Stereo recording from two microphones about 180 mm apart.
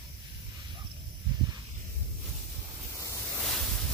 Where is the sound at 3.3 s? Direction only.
Centre (ahead or behind).